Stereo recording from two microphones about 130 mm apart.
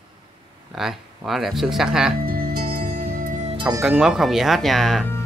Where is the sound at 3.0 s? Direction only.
90° right.